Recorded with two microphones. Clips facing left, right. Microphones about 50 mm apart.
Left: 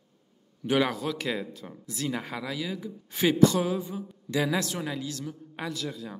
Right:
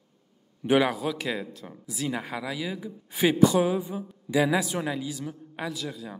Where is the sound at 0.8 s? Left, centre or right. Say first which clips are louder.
Right 1 dB; centre.